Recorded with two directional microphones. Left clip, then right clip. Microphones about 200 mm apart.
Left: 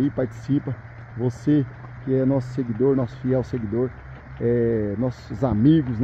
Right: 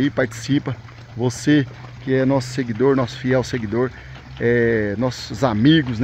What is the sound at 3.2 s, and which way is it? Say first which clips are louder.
Speech: right 4 dB; 10° left (ahead or behind).